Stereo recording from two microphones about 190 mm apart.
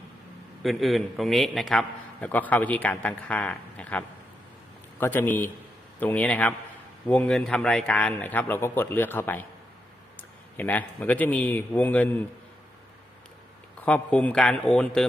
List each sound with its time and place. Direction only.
0.6 s a man's voice: centre (ahead or behind)
5.0 s a man's voice: 10° left (ahead or behind)
13.7 s a man's voice: 5° left (ahead or behind)